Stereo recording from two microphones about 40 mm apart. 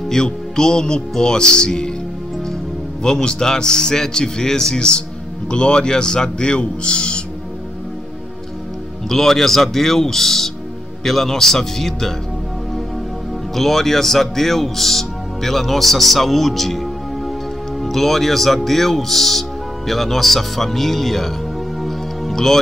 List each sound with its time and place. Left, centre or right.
0.1 s a man's voice: centre
3.0 s a man's voice: centre
9.1 s a man's voice: centre
13.6 s a man's voice: centre
21.8 s music: centre